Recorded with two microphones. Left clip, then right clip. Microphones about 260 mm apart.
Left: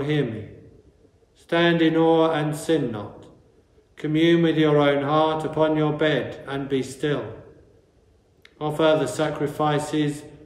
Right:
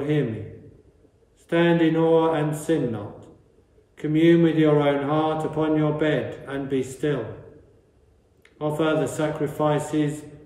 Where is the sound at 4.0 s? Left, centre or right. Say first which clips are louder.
Right 1 dB; centre.